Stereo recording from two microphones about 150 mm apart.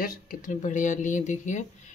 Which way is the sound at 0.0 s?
65° left (ahead or behind).